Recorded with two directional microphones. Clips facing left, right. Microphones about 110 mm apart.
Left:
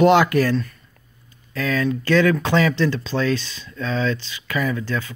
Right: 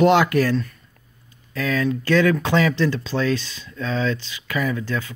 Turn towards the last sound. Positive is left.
turn(degrees=-10)  # may be behind; listen again after turning